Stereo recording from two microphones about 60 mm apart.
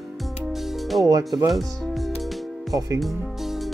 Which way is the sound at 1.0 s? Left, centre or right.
Right.